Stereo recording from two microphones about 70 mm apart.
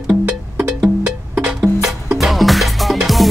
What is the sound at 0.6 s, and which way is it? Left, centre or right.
Music, centre.